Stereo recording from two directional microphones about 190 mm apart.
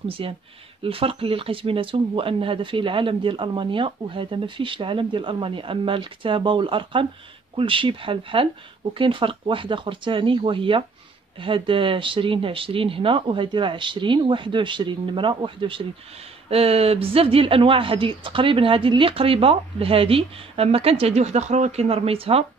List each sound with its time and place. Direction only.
0.2 s speech: 30° right (ahead or behind)